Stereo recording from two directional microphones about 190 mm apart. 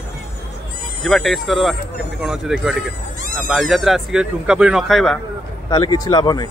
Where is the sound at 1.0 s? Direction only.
Centre (ahead or behind).